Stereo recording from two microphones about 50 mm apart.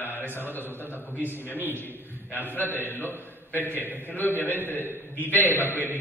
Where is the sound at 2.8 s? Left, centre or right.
Left.